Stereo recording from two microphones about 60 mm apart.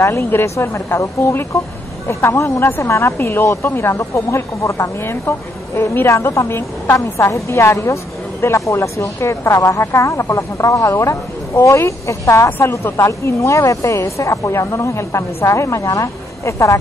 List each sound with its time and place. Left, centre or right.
0.2 s a woman's voice: left
3.9 s a woman's voice: left
4.7 s a woman's voice: left
11.5 s a woman's voice: left
12.4 s a woman's voice: left